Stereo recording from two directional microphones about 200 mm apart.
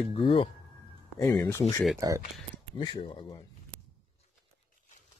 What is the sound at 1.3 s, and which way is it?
Speech, 15° left (ahead or behind).